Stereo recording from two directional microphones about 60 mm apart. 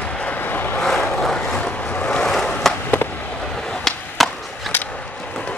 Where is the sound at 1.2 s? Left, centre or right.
Centre.